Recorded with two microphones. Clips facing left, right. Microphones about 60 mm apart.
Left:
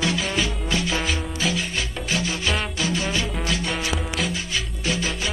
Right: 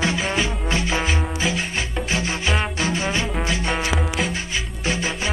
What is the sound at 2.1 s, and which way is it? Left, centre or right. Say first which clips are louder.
Music: right 1 dB; right.